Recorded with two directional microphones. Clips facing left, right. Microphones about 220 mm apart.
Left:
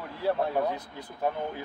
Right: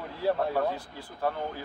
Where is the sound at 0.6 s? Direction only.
20° left (ahead or behind).